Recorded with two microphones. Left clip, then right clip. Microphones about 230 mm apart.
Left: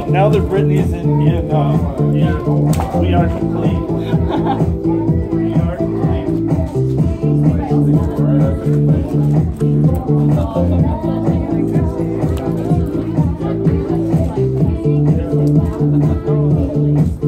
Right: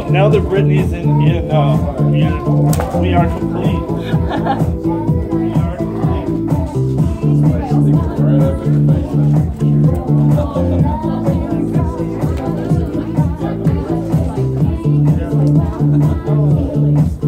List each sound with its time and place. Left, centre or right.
0.1 s speech: centre
4.1 s speech: right
6.5 s music: right